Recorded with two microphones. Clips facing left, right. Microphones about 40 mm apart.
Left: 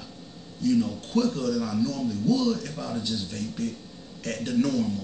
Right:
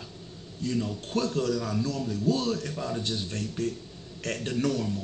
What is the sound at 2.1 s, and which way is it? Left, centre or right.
A man's voice, right.